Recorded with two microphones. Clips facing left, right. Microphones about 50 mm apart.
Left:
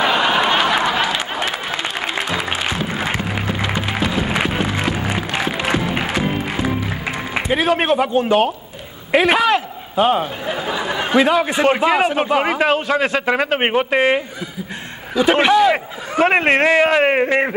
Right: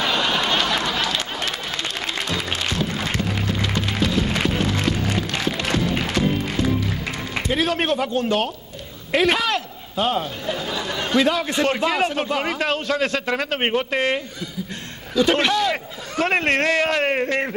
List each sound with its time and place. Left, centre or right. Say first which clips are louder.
0.0 s applause: left 6 dB; centre
9.1 s a man's voice: left 5 dB; centre